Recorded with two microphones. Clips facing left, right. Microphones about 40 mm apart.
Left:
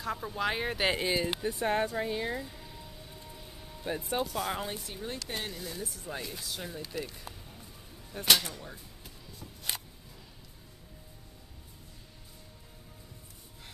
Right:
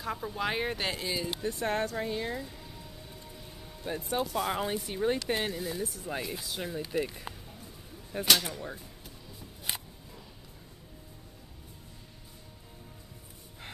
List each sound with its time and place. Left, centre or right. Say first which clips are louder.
0.0 s speech: left 1 dB; centre
0.8 s speech: left 4 dB; left
1.5 s speech: even; centre
6.0 s speech: right 3 dB; centre